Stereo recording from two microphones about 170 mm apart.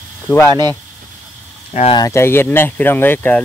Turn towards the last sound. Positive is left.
turn(degrees=10)  # may be behind; listen again after turning